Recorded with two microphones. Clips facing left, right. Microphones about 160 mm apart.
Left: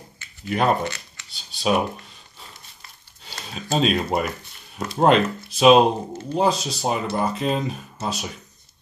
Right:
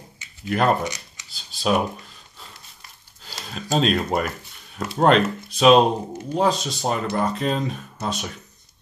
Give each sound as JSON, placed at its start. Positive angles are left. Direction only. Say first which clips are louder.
{"t": 0.5, "sound": "speech", "louder": "right 1 dB", "side_deg": 0}
{"t": 0.8, "sound": "speech", "louder": "even", "side_deg": -15}
{"t": 1.3, "sound": "speech", "louder": "even", "side_deg": 0}
{"t": 3.3, "sound": "speech", "louder": "right 1 dB", "side_deg": 0}